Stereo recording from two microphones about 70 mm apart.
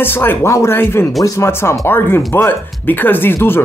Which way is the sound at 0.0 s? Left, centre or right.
Left.